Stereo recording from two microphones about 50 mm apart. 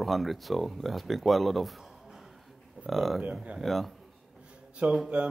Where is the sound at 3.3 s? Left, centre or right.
Right.